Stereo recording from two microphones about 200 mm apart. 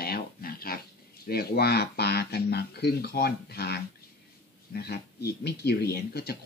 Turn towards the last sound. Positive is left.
turn(degrees=50)  # may be behind; listen again after turning